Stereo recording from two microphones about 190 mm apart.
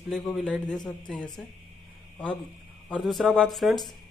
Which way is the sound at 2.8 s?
Centre (ahead or behind).